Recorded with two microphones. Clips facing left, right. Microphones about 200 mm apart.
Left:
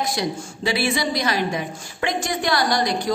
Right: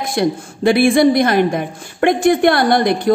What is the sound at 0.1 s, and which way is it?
A woman's voice, 55° right (ahead or behind).